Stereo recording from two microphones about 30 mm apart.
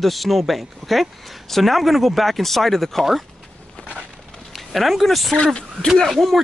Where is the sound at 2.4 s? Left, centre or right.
Centre.